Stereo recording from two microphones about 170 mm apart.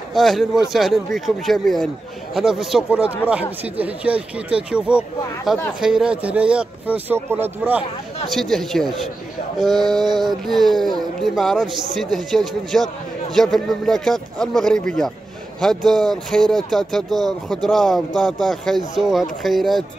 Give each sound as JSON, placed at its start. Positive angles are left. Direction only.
{"t": 0.1, "sound": "speech", "side_deg": 0}
{"t": 8.3, "sound": "speech", "side_deg": 0}
{"t": 10.0, "sound": "a sound", "side_deg": -25}
{"t": 10.4, "sound": "speech", "side_deg": 0}